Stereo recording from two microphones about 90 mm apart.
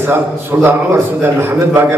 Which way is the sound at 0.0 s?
25° right (ahead or behind).